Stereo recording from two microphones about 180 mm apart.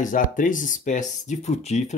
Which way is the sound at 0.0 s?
45° left (ahead or behind).